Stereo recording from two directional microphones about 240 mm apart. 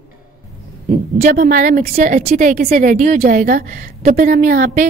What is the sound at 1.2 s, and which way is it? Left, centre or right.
A woman's voice, right.